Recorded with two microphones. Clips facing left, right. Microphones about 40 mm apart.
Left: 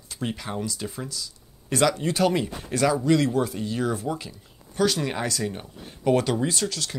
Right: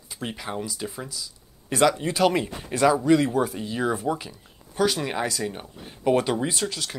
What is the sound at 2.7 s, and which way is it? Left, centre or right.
Speech, centre.